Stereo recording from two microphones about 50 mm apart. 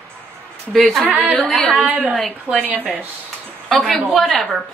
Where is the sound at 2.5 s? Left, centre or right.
Right.